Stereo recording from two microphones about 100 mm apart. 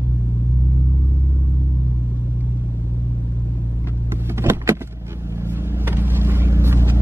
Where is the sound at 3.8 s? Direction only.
25° right (ahead or behind).